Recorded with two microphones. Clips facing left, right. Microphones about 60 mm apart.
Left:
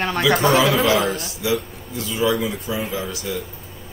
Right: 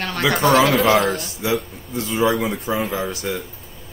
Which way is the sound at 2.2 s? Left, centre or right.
Right.